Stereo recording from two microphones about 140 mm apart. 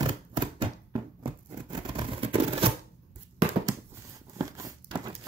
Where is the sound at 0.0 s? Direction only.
35° right (ahead or behind).